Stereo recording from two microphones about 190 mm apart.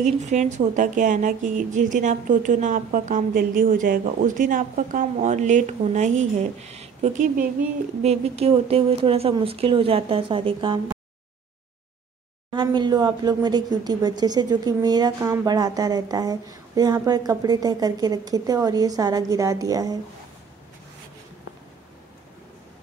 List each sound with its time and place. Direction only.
0.0 s speech: 40° right (ahead or behind)
12.5 s speech: 25° right (ahead or behind)